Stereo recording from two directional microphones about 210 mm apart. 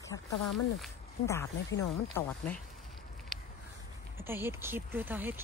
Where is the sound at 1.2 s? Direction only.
15° left (ahead or behind).